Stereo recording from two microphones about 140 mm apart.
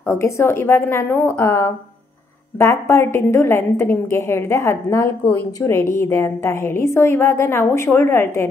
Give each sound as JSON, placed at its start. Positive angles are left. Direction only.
{"t": 0.0, "sound": "a woman's voice", "side_deg": 20}